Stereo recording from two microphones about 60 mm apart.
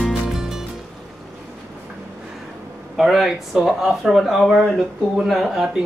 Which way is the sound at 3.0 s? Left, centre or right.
Centre.